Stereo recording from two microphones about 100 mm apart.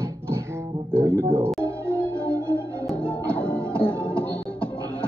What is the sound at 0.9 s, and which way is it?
Speech, 25° right (ahead or behind).